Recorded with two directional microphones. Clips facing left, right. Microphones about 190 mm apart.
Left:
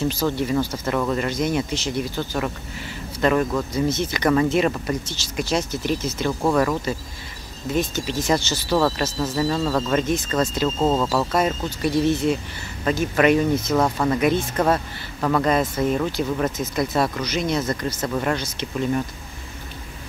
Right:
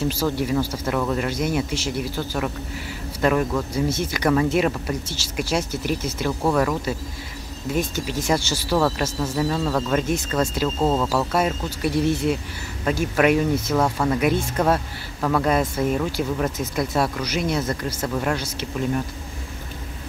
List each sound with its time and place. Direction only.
0.1 s speech: 5° right (ahead or behind)